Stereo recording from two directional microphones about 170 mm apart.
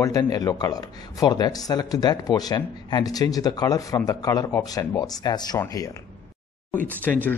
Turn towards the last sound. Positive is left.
turn(degrees=10)  # may be behind; listen again after turning